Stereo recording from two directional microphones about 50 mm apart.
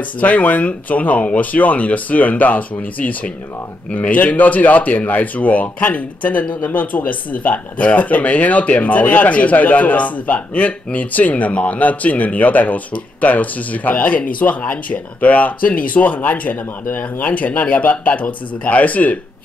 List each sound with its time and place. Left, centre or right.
0.2 s speech: left